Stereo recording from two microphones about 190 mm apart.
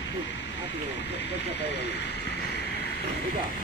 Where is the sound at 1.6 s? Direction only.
65° left (ahead or behind).